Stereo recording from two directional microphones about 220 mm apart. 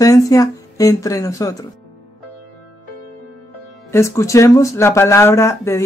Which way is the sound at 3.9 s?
15° left (ahead or behind).